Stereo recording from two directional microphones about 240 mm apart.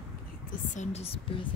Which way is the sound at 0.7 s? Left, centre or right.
Left.